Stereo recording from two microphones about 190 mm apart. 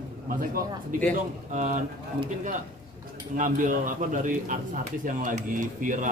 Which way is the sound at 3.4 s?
45° right (ahead or behind).